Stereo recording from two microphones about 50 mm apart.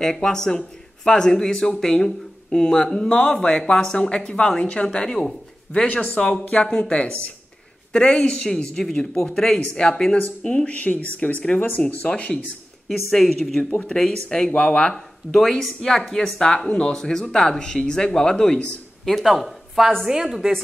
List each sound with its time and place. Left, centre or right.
0.0 s speech: centre
4.8 s speech: centre
6.4 s speech: left
6.7 s speech: centre
12.8 s speech: centre
13.8 s speech: centre
15.0 s speech: centre
19.2 s a woman's voice: centre